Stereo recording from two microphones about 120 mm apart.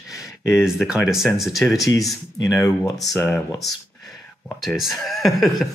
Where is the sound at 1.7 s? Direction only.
30° left (ahead or behind).